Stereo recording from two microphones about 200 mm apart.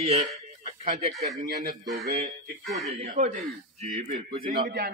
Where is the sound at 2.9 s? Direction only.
35° right (ahead or behind).